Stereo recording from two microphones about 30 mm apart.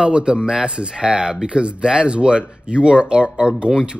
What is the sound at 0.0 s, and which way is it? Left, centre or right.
Speech, right.